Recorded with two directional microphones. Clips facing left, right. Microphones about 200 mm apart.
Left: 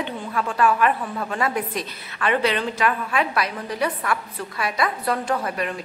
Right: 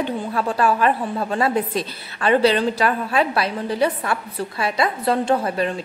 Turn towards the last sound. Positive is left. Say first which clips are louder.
# right 5 dB
turn(degrees=-30)  # may be behind; listen again after turning